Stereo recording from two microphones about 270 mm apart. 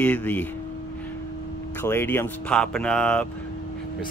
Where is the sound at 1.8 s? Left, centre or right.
Centre.